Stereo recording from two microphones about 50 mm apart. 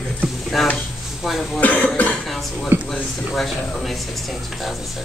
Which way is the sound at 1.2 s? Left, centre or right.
Centre.